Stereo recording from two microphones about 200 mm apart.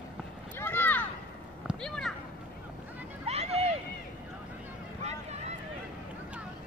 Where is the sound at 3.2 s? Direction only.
30° right (ahead or behind).